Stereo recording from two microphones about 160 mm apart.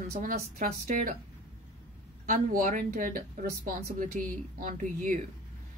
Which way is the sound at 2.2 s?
55° right (ahead or behind).